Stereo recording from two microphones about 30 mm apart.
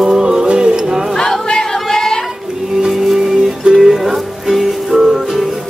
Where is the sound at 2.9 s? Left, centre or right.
Centre.